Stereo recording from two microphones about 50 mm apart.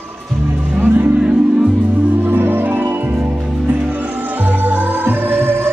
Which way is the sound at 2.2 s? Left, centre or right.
Right.